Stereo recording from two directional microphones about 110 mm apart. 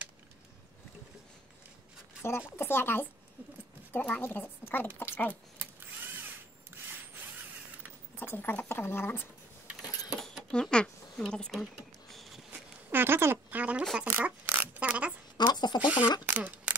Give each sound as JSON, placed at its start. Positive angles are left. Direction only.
{"t": 2.2, "sound": "a woman's voice", "side_deg": 25}
{"t": 5.3, "sound": "mechanisms", "side_deg": -20}
{"t": 8.2, "sound": "speech", "side_deg": 20}
{"t": 10.0, "sound": "a sound", "side_deg": 0}
{"t": 12.9, "sound": "speech", "side_deg": -20}
{"t": 15.3, "sound": "speech", "side_deg": 40}
{"t": 16.3, "sound": "a sound", "side_deg": -15}